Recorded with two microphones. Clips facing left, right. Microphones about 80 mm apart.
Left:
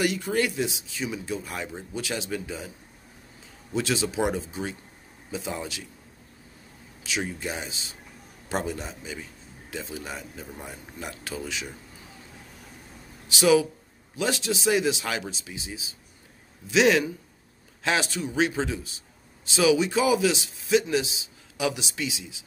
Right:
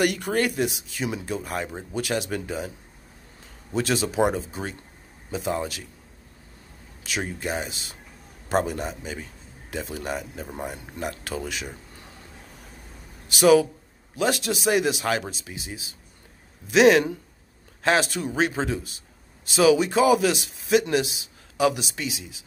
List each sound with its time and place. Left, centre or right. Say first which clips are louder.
0.0 s speech: right 2 dB; right
2.0 s speech: right 4 dB; right
3.7 s speech: right 3 dB; right
7.0 s speech: right 1 dB; right
13.3 s a man's voice: right 3 dB; right